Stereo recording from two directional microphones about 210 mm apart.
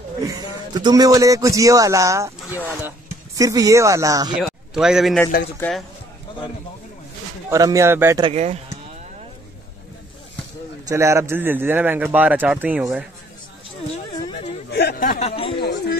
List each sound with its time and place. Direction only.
0.3 s a man's voice: 20° right (ahead or behind)
4.4 s a man's voice: centre (ahead or behind)
7.4 s a man's voice: 15° right (ahead or behind)
8.2 s speech: 30° right (ahead or behind)
10.9 s a man's voice: 15° right (ahead or behind)
14.7 s speech: 50° left (ahead or behind); by 15.6 s 25° left (ahead or behind)